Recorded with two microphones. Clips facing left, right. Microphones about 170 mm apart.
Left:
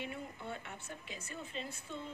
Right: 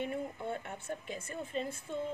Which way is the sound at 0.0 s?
50° right (ahead or behind).